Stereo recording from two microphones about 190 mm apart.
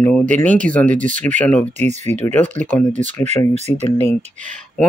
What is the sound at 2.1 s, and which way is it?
Speech, 10° left (ahead or behind).